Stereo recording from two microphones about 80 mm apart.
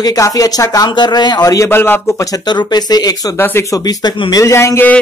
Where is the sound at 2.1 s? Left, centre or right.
Left.